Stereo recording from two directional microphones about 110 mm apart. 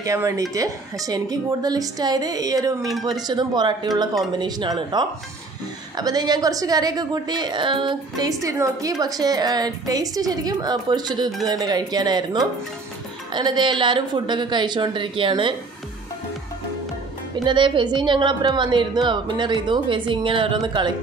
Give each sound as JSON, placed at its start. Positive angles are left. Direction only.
{"t": 0.0, "sound": "a woman's voice", "side_deg": -30}
{"t": 8.3, "sound": "a woman's voice", "side_deg": -30}
{"t": 17.5, "sound": "a woman's voice", "side_deg": -45}